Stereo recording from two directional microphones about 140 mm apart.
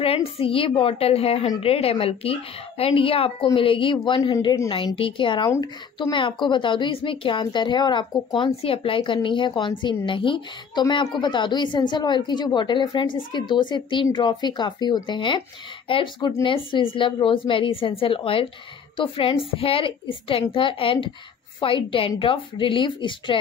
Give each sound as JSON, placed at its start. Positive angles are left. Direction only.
{"t": 0.0, "sound": "a woman's voice", "side_deg": 45}